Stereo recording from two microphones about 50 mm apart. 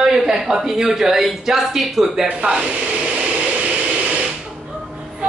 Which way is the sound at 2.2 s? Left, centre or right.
Right.